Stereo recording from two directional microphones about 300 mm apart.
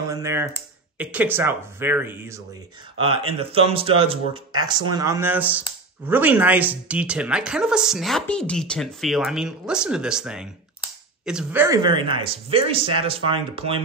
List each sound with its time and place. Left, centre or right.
0.1 s speech: centre